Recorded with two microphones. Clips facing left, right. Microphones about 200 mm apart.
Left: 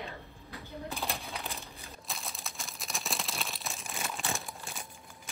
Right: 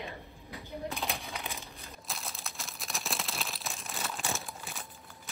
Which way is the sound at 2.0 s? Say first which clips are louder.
Even; centre (ahead or behind).